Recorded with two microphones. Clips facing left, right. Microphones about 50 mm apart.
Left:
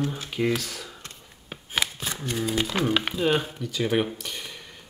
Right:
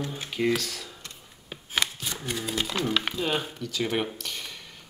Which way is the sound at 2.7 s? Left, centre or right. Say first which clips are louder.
Left 3 dB; left.